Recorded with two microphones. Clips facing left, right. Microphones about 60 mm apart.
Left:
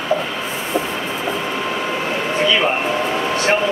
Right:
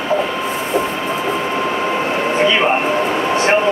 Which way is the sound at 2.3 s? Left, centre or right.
Right.